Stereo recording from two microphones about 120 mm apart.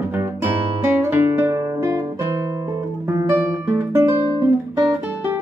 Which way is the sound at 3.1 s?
20° right (ahead or behind).